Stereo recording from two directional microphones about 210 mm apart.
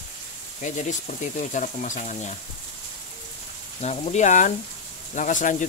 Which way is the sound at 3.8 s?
30° left (ahead or behind).